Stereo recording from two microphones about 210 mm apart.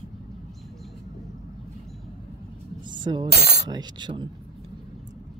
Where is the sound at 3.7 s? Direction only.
20° right (ahead or behind).